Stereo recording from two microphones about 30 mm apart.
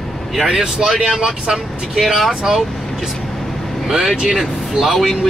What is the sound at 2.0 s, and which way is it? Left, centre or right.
Speech, centre.